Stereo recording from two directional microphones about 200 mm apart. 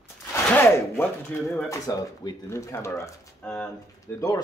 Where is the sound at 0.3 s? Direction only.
10° left (ahead or behind).